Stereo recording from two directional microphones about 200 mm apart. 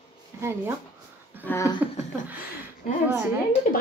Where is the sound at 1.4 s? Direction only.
15° left (ahead or behind).